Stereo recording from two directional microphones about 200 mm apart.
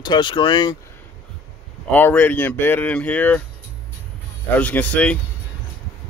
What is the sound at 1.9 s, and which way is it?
Speech, 10° left (ahead or behind).